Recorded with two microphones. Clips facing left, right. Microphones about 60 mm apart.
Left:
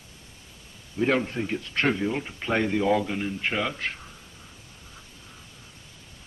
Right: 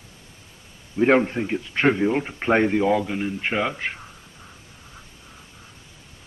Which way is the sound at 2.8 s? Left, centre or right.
Centre.